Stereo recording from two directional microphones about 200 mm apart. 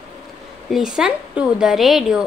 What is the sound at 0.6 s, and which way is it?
A woman's voice, centre (ahead or behind).